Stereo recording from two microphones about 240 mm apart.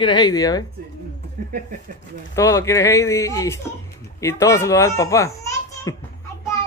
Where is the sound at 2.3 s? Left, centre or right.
Centre.